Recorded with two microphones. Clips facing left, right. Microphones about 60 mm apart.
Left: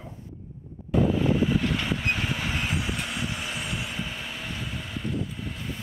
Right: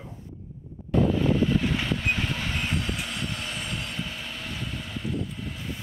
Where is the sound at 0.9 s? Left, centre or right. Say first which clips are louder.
Even; centre.